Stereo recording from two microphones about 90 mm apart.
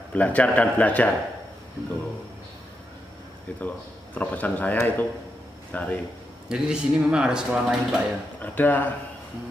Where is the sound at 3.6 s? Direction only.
20° left (ahead or behind).